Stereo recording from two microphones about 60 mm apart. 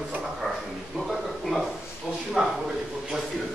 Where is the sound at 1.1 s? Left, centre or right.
Centre.